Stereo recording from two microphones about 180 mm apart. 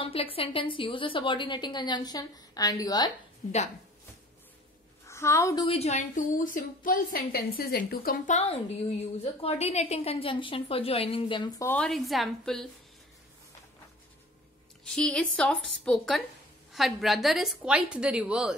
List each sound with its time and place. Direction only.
0.0 s a woman's voice: 30° left (ahead or behind)
3.4 s a woman's voice: 40° left (ahead or behind)
5.0 s a woman's voice: 15° left (ahead or behind)
5.7 s a woman's voice: 35° left (ahead or behind); by 8.4 s 55° left (ahead or behind)
9.2 s a woman's voice: 35° left (ahead or behind)
11.6 s a woman's voice: 5° left (ahead or behind)
14.9 s a woman's voice: 5° left (ahead or behind)